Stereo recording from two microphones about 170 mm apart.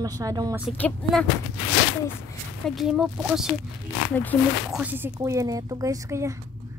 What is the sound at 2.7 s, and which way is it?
Speech, centre (ahead or behind).